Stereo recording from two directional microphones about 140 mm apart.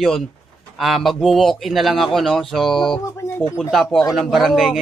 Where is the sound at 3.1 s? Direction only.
20° left (ahead or behind).